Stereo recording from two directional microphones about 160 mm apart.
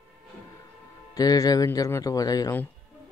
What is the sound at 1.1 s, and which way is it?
A man's voice, 25° left (ahead or behind).